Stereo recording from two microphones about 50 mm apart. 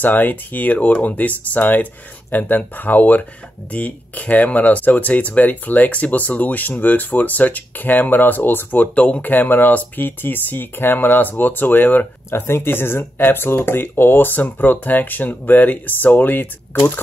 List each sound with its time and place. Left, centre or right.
0.0 s speech: left
8.9 s speech: left
9.2 s speech: left
12.3 s speech: left